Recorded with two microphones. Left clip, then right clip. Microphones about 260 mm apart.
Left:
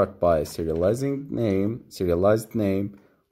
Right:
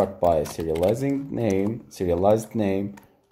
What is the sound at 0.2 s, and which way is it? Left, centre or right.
Speech, left.